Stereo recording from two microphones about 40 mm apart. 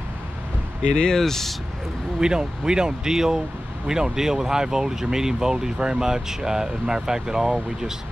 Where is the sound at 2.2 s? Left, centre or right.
Centre.